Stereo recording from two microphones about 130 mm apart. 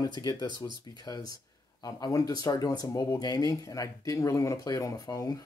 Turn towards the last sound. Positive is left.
turn(degrees=30)  # may be behind; listen again after turning